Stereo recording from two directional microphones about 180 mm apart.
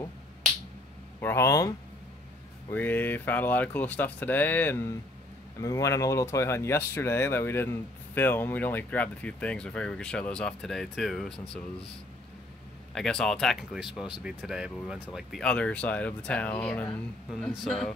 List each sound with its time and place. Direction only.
1.2 s speech: 15° left (ahead or behind)
2.7 s speech: 10° left (ahead or behind)
12.9 s speech: 5° left (ahead or behind)